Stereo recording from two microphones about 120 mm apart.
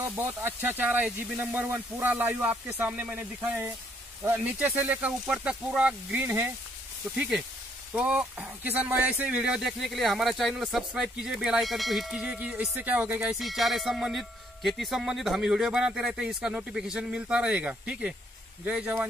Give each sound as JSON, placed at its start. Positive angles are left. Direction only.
{"t": 0.0, "sound": "speech", "side_deg": -15}
{"t": 7.2, "sound": "speech", "side_deg": -5}